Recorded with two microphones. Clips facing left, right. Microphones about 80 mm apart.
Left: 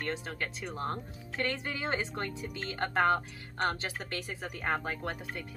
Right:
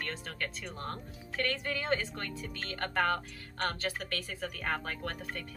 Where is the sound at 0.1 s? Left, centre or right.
Centre.